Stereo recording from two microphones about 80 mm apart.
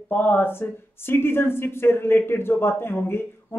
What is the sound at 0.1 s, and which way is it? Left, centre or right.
A woman's voice, left.